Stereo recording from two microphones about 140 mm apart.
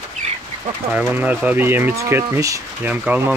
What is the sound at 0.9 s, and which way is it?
Speech, 15° right (ahead or behind).